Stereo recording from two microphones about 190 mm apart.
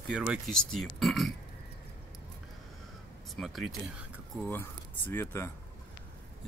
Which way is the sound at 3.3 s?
Centre (ahead or behind).